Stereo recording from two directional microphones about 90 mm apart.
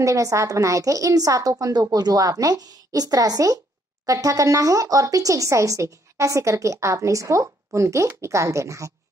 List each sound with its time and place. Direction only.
0.0 s a woman's voice: 35° right (ahead or behind)